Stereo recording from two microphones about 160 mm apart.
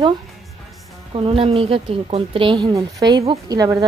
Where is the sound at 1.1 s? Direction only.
35° right (ahead or behind).